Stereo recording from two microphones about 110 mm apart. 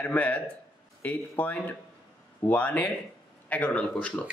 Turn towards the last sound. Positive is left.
turn(degrees=10)  # may be behind; listen again after turning